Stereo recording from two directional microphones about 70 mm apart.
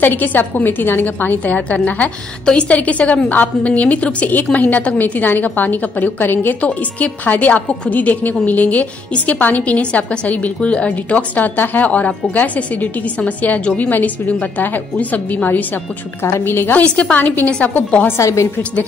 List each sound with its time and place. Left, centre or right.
0.0 s a woman's voice: left
16.2 s a woman's voice: left
16.8 s a woman's voice: centre
18.1 s a woman's voice: left